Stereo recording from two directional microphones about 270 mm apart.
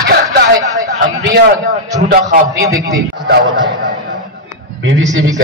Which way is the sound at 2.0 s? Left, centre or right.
Right.